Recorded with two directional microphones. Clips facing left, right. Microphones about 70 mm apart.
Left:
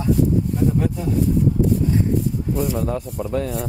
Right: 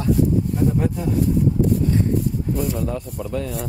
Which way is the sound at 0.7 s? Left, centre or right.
Centre.